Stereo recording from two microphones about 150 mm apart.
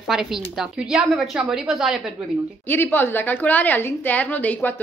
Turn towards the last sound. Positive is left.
turn(degrees=10)  # may be behind; listen again after turning